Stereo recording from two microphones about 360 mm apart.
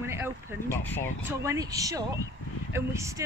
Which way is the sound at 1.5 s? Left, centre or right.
Centre.